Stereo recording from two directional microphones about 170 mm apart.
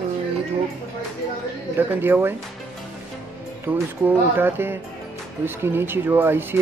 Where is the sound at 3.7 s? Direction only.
10° right (ahead or behind).